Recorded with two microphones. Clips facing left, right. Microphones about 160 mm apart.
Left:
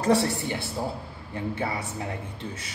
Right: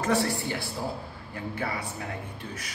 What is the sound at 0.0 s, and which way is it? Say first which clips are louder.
A man's voice: left 3 dB; 25° left (ahead or behind).